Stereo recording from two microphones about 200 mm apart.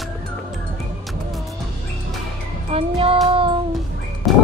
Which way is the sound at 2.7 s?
30° right (ahead or behind).